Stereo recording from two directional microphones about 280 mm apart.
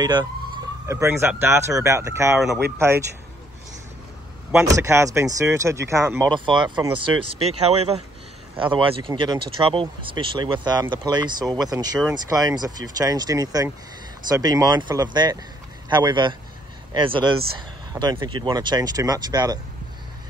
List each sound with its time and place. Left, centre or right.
0.0 s speech: centre
4.5 s speech: centre